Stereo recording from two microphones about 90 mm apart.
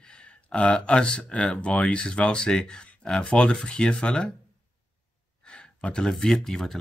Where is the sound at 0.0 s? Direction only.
10° left (ahead or behind).